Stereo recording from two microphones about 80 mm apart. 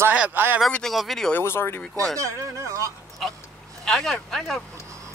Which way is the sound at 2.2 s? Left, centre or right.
Right.